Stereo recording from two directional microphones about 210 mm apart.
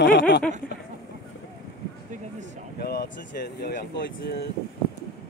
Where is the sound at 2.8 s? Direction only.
50° left (ahead or behind).